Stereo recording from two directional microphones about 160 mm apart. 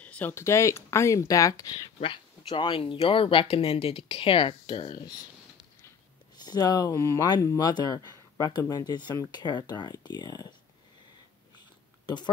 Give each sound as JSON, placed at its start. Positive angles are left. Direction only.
{"t": 0.0, "sound": "speech", "side_deg": 10}
{"t": 2.0, "sound": "speech", "side_deg": 35}
{"t": 6.3, "sound": "speech", "side_deg": 25}